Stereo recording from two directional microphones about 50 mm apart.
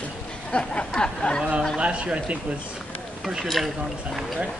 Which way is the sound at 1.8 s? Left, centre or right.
Right.